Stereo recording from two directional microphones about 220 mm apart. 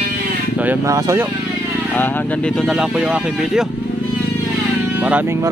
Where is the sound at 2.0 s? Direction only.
10° left (ahead or behind).